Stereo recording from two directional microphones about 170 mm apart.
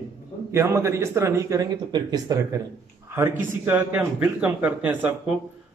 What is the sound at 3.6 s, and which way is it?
A man's voice, 10° right (ahead or behind).